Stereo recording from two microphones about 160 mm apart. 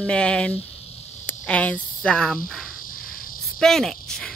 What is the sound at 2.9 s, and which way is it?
Insect, 60° left (ahead or behind).